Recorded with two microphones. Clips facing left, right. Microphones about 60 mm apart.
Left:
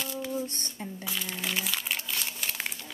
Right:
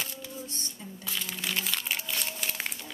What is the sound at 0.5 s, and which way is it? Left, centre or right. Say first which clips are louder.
Speech: left 3 dB; left.